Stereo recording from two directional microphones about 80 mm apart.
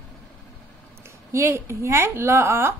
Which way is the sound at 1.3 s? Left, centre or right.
Right.